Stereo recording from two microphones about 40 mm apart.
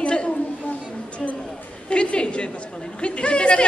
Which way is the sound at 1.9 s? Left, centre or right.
Left.